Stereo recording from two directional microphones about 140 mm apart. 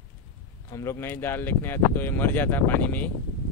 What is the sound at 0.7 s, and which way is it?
Speech, 20° left (ahead or behind).